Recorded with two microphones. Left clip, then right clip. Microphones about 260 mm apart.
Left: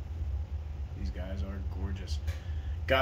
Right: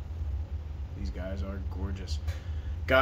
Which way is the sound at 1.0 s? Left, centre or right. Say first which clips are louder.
Right 4 dB; centre.